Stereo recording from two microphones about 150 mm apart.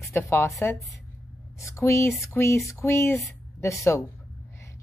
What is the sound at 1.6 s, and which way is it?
A woman's voice, 20° left (ahead or behind).